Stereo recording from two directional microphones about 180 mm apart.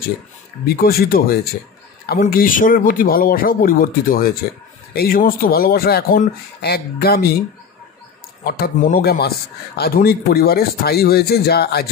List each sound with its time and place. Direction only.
0.7 s speech: 55° left (ahead or behind)
8.5 s speech: 55° left (ahead or behind)